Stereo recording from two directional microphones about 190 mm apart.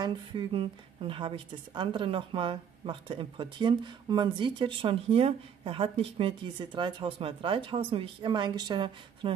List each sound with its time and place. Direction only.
0.0 s speech: 25° right (ahead or behind)